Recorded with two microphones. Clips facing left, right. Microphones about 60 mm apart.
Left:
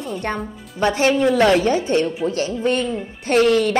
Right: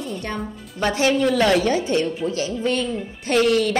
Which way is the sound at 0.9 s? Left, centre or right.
Left.